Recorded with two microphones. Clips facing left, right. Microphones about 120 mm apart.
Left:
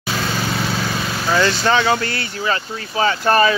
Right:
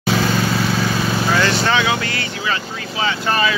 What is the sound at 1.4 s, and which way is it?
Speech, 35° left (ahead or behind).